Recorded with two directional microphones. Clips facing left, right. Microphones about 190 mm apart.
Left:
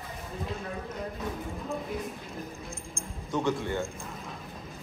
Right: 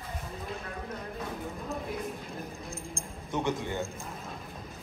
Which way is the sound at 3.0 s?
35° right (ahead or behind).